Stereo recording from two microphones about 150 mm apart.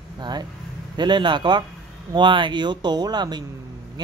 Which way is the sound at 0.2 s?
30° right (ahead or behind).